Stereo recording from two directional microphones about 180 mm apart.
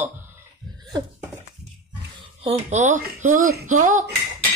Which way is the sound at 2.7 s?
45° right (ahead or behind).